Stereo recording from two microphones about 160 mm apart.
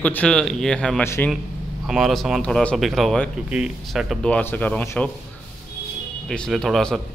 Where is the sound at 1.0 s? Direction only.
15° left (ahead or behind).